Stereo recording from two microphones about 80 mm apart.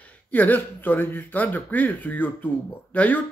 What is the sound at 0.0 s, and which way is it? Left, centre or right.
Speech, left.